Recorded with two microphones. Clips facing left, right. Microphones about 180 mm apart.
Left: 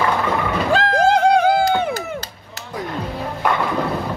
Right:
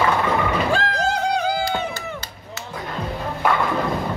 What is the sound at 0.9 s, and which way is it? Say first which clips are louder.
Music: left 8 dB; 50° left (ahead or behind).